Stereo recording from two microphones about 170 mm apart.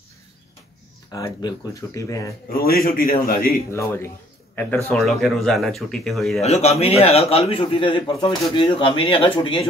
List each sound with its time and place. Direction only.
1.1 s speech: 20° left (ahead or behind)
2.5 s a man's voice: 60° left (ahead or behind)
3.7 s speech: 15° left (ahead or behind)
6.4 s a man's voice: 40° left (ahead or behind)